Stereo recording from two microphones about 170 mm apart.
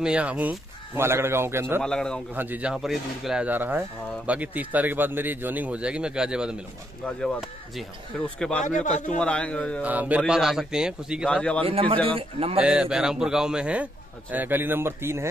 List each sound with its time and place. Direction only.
0.0 s speech: 5° right (ahead or behind)
1.8 s a man's voice: 5° left (ahead or behind)
2.3 s a man's voice: 10° right (ahead or behind); by 8.6 s 5° left (ahead or behind)
8.6 s a man's voice: 45° left (ahead or behind)
9.2 s a man's voice: 5° left (ahead or behind)
9.8 s a man's voice: 10° right (ahead or behind)
11.6 s a man's voice: 30° right (ahead or behind)
12.6 s a man's voice: 5° right (ahead or behind)